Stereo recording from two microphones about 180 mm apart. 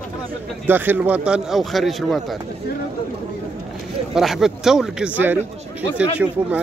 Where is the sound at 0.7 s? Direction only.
10° right (ahead or behind).